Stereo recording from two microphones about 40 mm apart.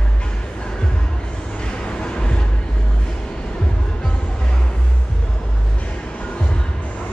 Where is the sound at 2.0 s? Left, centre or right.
Left.